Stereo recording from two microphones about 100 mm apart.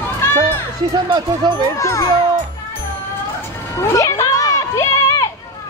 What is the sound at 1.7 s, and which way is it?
Speech, 30° left (ahead or behind).